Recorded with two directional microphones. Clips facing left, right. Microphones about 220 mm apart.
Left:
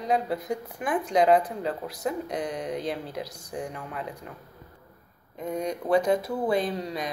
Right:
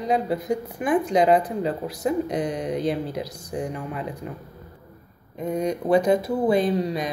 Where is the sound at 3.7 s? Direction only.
15° right (ahead or behind).